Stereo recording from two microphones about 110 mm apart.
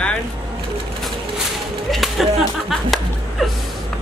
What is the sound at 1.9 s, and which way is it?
Speech, centre (ahead or behind).